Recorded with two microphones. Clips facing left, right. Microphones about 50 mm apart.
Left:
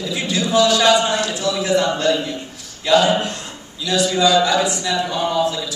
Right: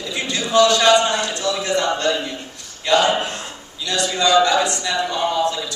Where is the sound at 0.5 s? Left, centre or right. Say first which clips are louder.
Right 1 dB; centre.